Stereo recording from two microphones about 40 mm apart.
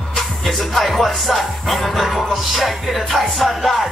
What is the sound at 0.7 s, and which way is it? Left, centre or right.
Music, centre.